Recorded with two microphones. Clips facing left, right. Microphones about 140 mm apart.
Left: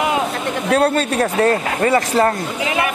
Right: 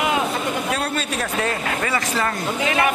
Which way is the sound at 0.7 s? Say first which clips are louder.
Left 9 dB; 55° left (ahead or behind).